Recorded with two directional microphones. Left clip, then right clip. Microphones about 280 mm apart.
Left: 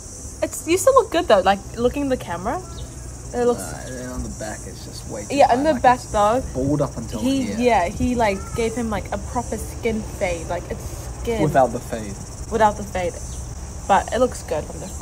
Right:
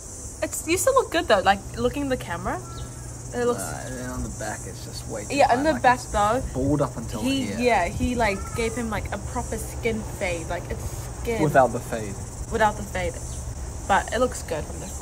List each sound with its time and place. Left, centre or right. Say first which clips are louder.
0.4 s speech: left 4 dB; centre
3.6 s speech: left 1 dB; centre
5.3 s speech: left 4 dB; centre
11.5 s speech: even; centre
12.5 s speech: left 4 dB; centre